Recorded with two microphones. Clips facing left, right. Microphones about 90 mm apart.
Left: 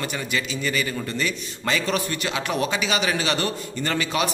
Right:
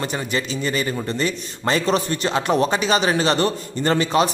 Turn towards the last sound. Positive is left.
turn(degrees=-35)  # may be behind; listen again after turning